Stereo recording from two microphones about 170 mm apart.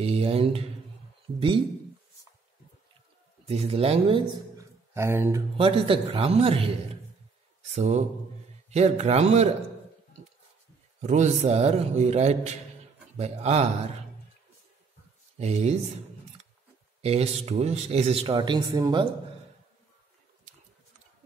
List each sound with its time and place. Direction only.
0.0 s speech: 35° right (ahead or behind)
3.4 s speech: 35° right (ahead or behind)
4.6 s a sound: 15° right (ahead or behind)
5.6 s speech: 35° right (ahead or behind)
7.7 s speech: 40° right (ahead or behind)
11.0 s speech: 40° right (ahead or behind)
15.3 s speech: 40° right (ahead or behind)
17.0 s speech: 35° right (ahead or behind)